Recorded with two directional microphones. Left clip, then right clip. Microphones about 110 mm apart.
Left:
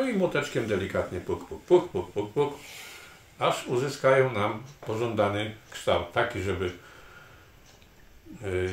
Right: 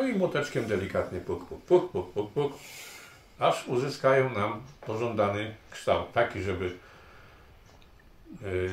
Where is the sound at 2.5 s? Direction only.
40° right (ahead or behind).